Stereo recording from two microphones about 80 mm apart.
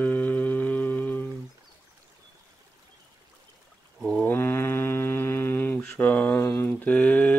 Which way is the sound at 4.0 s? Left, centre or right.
Centre.